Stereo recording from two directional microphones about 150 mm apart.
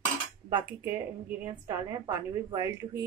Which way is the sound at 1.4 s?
25° right (ahead or behind).